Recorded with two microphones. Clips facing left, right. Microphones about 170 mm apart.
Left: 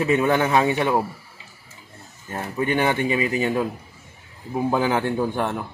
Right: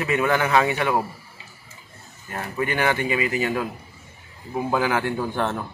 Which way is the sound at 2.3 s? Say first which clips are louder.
Left 2 dB; 20° left (ahead or behind).